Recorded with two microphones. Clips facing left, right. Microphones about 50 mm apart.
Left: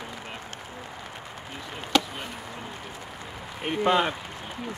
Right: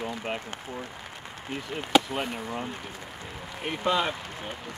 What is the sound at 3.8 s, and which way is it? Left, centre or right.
Speech, left.